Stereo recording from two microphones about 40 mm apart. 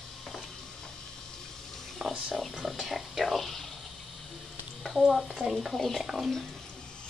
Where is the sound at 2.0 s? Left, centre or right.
Centre.